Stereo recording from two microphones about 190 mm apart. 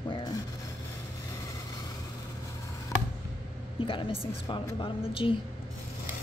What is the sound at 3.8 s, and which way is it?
A woman's voice, 25° left (ahead or behind).